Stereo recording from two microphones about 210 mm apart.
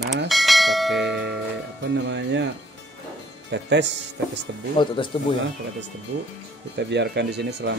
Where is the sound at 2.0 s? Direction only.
60° right (ahead or behind).